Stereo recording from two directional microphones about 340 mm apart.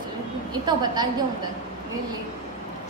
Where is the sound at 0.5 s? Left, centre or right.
Centre.